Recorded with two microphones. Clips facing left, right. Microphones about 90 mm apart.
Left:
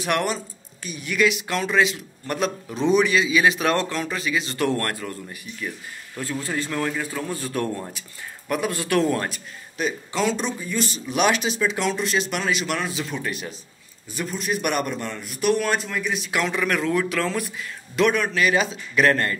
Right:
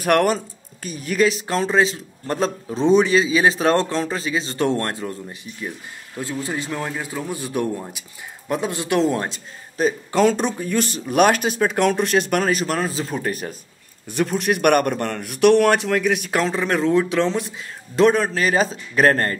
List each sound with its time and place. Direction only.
0.0 s speech: 50° right (ahead or behind)
0.8 s a man's voice: 40° right (ahead or behind); by 8.0 s 15° right (ahead or behind)
8.5 s a man's voice: 25° right (ahead or behind)
9.8 s speech: 45° right (ahead or behind)
14.0 s a man's voice: 60° right (ahead or behind)
16.3 s a man's voice: 35° right (ahead or behind)